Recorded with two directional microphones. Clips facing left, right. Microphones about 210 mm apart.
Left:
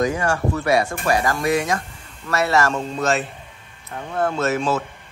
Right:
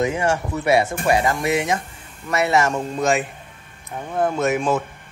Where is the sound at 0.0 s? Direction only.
20° right (ahead or behind).